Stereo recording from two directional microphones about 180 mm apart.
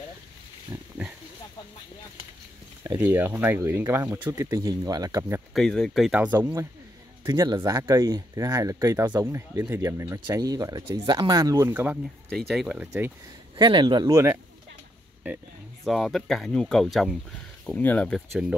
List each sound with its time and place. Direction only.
2.8 s speech: 15° right (ahead or behind)
5.5 s speech: 5° left (ahead or behind)
12.3 s speech: centre (ahead or behind)
13.6 s speech: 25° right (ahead or behind)
15.8 s speech: centre (ahead or behind)